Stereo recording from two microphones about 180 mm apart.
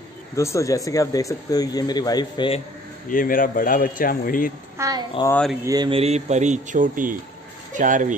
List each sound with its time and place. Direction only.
0.4 s speech: 15° left (ahead or behind)
3.1 s speech: 50° left (ahead or behind)
4.7 s a child's voice: 20° right (ahead or behind)
5.3 s speech: 5° left (ahead or behind)
5.6 s speech: 20° right (ahead or behind)
5.9 s speech: 35° right (ahead or behind)